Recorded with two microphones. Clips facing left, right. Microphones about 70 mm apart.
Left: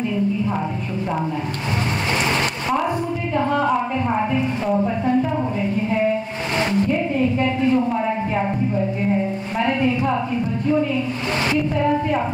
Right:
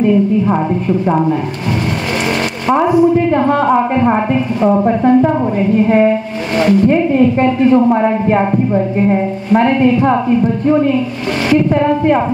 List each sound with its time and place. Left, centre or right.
3.3 s a woman's voice: right